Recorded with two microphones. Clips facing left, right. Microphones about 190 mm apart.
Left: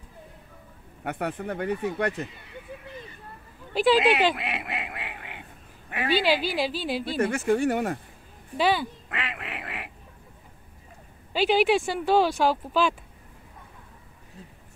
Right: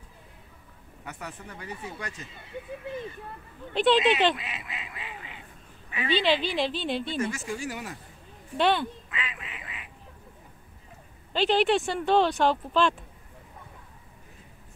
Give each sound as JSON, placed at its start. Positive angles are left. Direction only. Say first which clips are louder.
{"t": 1.0, "sound": "speech", "louder": "left 11 dB", "side_deg": 60}
{"t": 3.7, "sound": "speech", "louder": "left 1 dB", "side_deg": 5}
{"t": 4.4, "sound": "a sound", "louder": "left 8 dB", "side_deg": 65}
{"t": 6.1, "sound": "speech", "louder": "left 1 dB", "side_deg": 5}
{"t": 7.2, "sound": "speech", "louder": "left 8 dB", "side_deg": 60}
{"t": 8.5, "sound": "speech", "louder": "even", "side_deg": 5}
{"t": 9.1, "sound": "quack", "louder": "left 4 dB", "side_deg": 65}
{"t": 11.3, "sound": "speech", "louder": "left 2 dB", "side_deg": 5}